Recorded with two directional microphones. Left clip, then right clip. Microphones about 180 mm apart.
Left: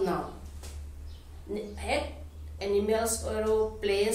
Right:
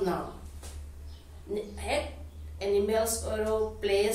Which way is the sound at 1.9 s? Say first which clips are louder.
Left 1 dB; 15° left (ahead or behind).